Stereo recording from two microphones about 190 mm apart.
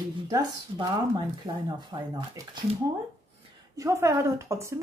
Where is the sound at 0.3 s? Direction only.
20° right (ahead or behind).